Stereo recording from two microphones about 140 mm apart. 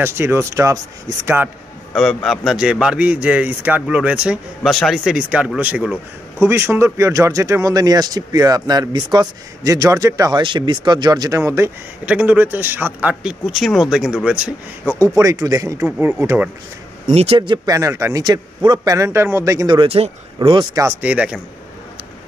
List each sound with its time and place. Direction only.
0.0 s a man's voice: 15° right (ahead or behind)
2.0 s a man's voice: centre (ahead or behind)
13.1 s speech: 5° right (ahead or behind)
15.1 s speech: 25° right (ahead or behind)
17.1 s speech: 50° right (ahead or behind)
17.4 s speech: 30° right (ahead or behind)
21.0 s a man's voice: 10° right (ahead or behind)